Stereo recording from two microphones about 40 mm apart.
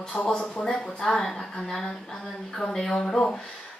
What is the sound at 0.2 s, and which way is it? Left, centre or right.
Speech, left.